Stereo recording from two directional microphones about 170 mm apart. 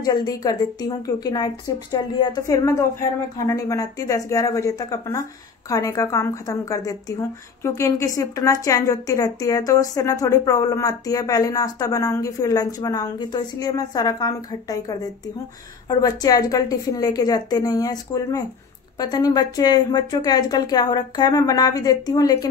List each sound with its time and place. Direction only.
0.0 s a woman's voice: 20° left (ahead or behind)